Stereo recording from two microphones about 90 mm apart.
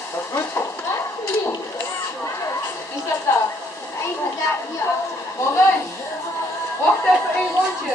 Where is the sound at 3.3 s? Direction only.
30° left (ahead or behind).